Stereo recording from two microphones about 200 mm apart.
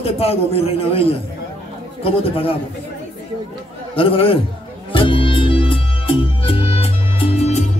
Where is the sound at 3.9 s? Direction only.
25° left (ahead or behind).